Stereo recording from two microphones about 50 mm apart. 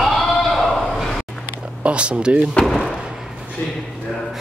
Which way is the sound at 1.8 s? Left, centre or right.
Right.